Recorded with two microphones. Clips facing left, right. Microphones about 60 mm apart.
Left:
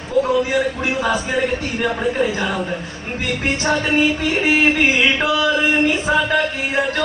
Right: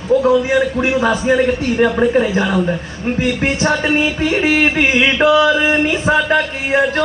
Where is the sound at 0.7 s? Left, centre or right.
Right.